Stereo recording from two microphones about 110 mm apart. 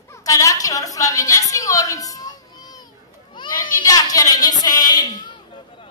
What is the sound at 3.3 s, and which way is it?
Speech, 40° left (ahead or behind).